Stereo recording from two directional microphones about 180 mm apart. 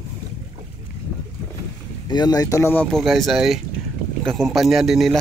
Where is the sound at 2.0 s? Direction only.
20° left (ahead or behind).